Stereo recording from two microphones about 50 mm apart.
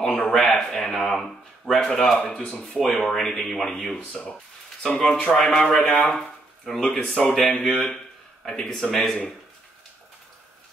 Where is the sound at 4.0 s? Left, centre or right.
Left.